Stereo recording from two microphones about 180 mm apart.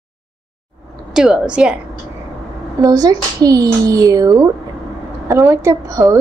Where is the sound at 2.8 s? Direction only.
20° right (ahead or behind).